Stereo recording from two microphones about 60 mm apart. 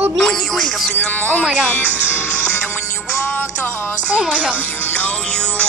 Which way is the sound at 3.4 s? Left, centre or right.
Left.